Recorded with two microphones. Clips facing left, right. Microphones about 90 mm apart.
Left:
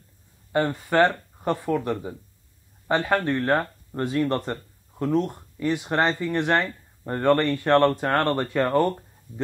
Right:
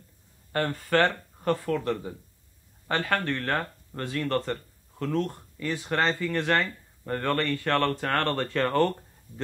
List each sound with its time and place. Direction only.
0.5 s speech: 15° left (ahead or behind)